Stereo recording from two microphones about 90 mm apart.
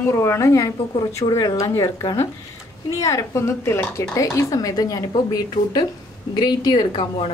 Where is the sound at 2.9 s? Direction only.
35° left (ahead or behind); by 6.8 s 55° left (ahead or behind).